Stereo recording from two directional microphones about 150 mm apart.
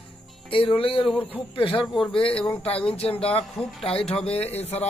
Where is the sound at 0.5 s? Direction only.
35° left (ahead or behind).